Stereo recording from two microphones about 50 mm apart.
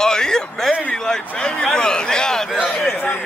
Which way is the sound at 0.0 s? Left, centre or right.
Centre.